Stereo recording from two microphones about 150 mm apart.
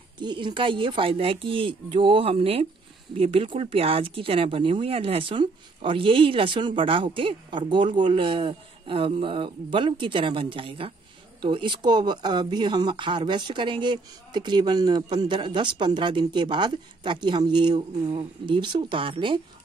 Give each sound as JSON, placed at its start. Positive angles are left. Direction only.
{"t": 0.2, "sound": "speech", "side_deg": -30}